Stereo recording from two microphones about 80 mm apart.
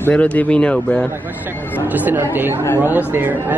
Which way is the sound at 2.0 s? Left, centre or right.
Right.